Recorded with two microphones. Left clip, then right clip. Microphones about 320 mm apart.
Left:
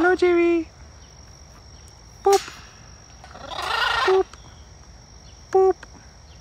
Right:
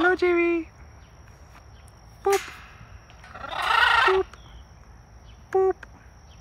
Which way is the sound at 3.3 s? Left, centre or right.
Centre.